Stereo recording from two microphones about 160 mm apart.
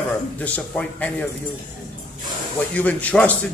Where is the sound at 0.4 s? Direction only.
10° left (ahead or behind).